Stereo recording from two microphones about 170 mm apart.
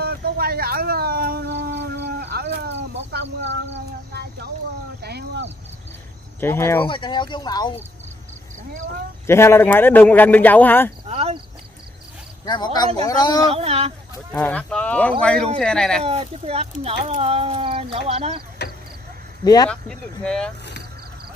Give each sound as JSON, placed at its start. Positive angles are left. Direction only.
{"t": 0.0, "sound": "a sound", "side_deg": -65}
{"t": 6.4, "sound": "speech", "side_deg": 15}
{"t": 6.9, "sound": "speech", "side_deg": 30}
{"t": 9.2, "sound": "speech", "side_deg": 15}
{"t": 11.1, "sound": "a sound", "side_deg": -35}
{"t": 12.4, "sound": "speech", "side_deg": 25}
{"t": 13.5, "sound": "speech", "side_deg": -35}
{"t": 14.3, "sound": "speech", "side_deg": 10}
{"t": 16.0, "sound": "speech", "side_deg": -35}
{"t": 18.6, "sound": "vehicle", "side_deg": 75}
{"t": 19.4, "sound": "speech", "side_deg": 20}
{"t": 19.7, "sound": "speech", "side_deg": 5}